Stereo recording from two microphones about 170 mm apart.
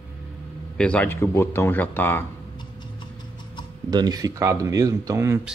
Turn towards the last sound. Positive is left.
turn(degrees=-15)  # may be behind; listen again after turning